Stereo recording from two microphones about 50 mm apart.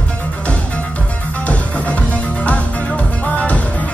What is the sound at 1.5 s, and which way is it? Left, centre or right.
Music, left.